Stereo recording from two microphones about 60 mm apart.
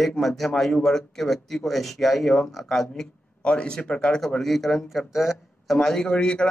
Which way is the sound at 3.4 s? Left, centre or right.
Centre.